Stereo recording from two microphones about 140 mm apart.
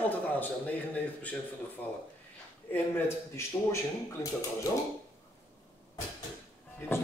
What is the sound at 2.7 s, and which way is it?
Speech, 20° left (ahead or behind).